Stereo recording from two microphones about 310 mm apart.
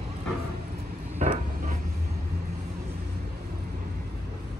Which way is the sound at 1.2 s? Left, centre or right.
Right.